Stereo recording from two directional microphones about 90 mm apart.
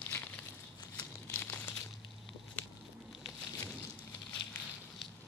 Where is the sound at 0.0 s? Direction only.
20° left (ahead or behind).